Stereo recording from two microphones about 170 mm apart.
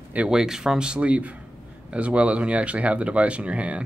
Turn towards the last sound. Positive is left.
turn(degrees=-5)  # may be behind; listen again after turning